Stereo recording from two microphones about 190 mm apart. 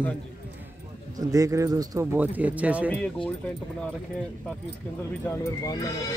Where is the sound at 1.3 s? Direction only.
15° right (ahead or behind).